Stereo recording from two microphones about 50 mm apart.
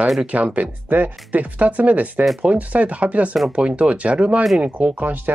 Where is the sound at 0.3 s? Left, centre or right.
Right.